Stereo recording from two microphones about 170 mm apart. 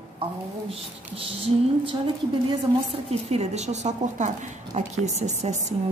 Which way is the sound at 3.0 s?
40° right (ahead or behind).